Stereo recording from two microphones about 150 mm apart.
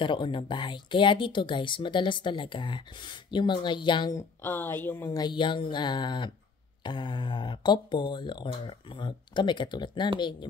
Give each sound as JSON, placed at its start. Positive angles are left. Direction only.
{"t": 0.0, "sound": "speech", "side_deg": 30}
{"t": 4.2, "sound": "speech", "side_deg": 15}